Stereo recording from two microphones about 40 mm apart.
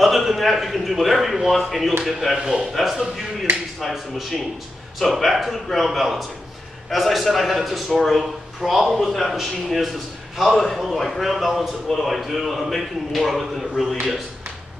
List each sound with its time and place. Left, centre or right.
0.0 s a man's voice: centre
2.3 s a man's voice: right
2.7 s a man's voice: centre